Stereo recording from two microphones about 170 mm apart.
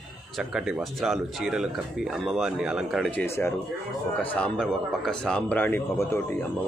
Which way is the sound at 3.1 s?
10° left (ahead or behind).